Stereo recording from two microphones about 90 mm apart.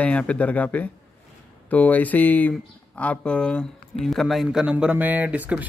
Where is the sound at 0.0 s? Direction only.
15° left (ahead or behind).